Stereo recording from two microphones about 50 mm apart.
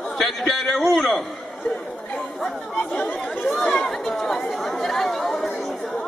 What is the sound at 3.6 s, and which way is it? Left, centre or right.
Speech, centre.